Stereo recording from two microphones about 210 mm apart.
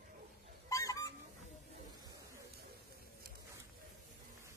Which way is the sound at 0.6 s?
15° left (ahead or behind).